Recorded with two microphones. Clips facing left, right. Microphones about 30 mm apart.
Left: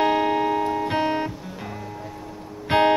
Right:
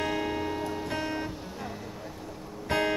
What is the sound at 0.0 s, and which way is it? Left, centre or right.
Music, left.